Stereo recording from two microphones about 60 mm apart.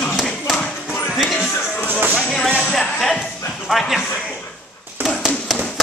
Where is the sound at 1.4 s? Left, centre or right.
Left.